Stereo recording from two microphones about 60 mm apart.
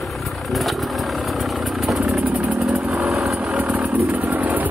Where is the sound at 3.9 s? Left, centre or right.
Right.